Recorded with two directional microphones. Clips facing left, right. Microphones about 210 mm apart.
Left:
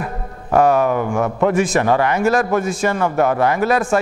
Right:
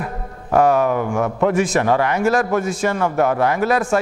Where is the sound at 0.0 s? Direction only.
15° left (ahead or behind).